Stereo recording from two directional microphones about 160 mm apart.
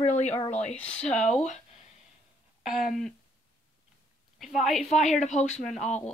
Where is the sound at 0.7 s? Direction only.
5° left (ahead or behind).